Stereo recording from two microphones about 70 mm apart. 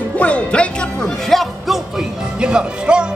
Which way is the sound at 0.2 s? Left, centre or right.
Centre.